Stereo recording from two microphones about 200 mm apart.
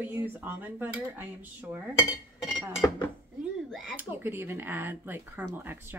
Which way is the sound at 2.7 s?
15° left (ahead or behind).